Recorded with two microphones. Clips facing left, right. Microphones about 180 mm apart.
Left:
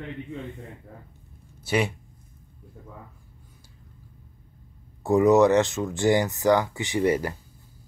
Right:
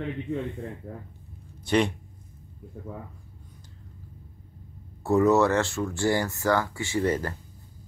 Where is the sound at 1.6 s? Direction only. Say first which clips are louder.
Right 2 dB; 5° left (ahead or behind).